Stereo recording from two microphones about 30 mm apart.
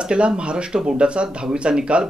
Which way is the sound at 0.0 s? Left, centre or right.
Right.